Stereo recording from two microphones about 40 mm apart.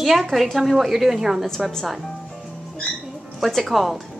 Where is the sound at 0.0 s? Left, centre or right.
Centre.